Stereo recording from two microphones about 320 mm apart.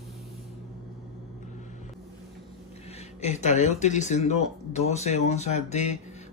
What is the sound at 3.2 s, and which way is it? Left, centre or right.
Speech, left.